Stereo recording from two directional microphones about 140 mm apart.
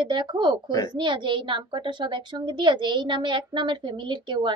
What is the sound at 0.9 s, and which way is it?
A woman's voice, 35° right (ahead or behind).